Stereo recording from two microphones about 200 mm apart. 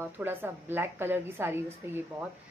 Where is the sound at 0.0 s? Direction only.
10° right (ahead or behind).